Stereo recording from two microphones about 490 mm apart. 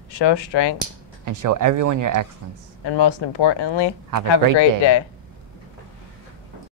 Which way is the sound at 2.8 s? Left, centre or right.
Left.